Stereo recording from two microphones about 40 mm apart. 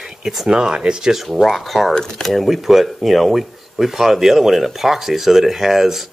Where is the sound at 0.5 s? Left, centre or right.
Right.